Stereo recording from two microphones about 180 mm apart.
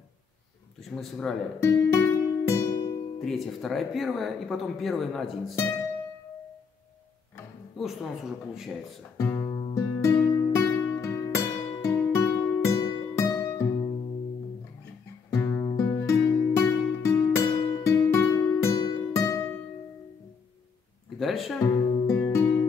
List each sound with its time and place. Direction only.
0.7 s speech: centre (ahead or behind)
1.6 s music: 15° left (ahead or behind)
3.2 s speech: centre (ahead or behind)
7.7 s speech: centre (ahead or behind)
9.2 s music: 20° left (ahead or behind)
15.3 s music: 15° left (ahead or behind)
21.2 s music: centre (ahead or behind)
21.5 s music: 15° left (ahead or behind)